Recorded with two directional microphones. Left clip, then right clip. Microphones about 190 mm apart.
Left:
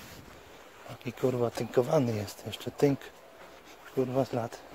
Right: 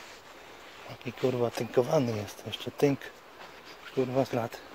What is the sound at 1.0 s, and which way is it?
Speech, 20° left (ahead or behind).